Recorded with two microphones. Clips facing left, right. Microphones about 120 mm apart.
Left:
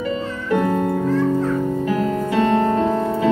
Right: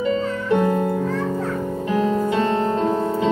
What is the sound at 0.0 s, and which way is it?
Music, 25° right (ahead or behind).